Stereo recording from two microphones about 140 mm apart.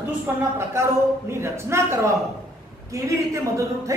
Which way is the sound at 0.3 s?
15° right (ahead or behind).